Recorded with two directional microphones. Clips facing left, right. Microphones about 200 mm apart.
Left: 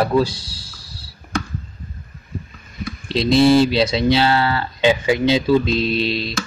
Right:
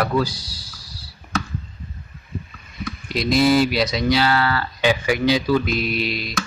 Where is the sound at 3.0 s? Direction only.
25° left (ahead or behind).